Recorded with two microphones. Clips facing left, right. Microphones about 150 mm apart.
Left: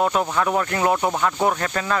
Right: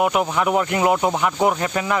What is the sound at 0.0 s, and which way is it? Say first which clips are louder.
Speech: right 1 dB; 10° right (ahead or behind).